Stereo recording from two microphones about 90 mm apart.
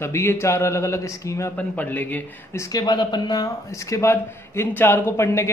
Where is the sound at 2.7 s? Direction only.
50° left (ahead or behind).